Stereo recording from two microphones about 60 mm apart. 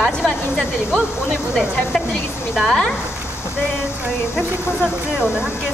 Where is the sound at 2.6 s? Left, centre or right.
Centre.